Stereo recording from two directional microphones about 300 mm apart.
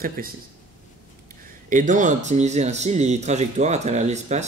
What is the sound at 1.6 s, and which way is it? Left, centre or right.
Speech, right.